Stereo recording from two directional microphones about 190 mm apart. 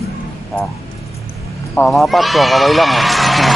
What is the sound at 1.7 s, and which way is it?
Speech, centre (ahead or behind).